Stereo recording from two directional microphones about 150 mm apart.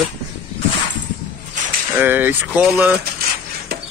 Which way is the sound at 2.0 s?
10° right (ahead or behind).